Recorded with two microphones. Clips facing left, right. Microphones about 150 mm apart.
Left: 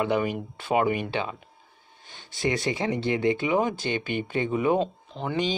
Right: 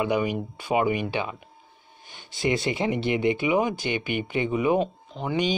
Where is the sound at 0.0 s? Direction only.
10° right (ahead or behind).